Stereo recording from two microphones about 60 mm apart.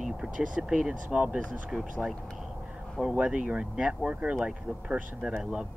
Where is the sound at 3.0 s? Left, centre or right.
Centre.